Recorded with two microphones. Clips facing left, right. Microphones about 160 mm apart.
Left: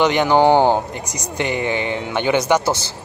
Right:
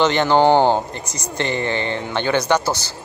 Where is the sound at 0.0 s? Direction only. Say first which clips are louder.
Left 1 dB; 10° left (ahead or behind).